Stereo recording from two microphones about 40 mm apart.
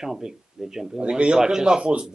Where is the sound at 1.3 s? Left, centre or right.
Centre.